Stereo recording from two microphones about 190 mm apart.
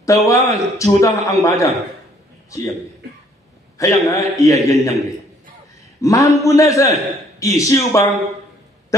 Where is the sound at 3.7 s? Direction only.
15° left (ahead or behind).